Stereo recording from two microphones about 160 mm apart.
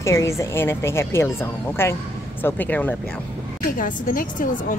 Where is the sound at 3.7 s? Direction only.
55° left (ahead or behind).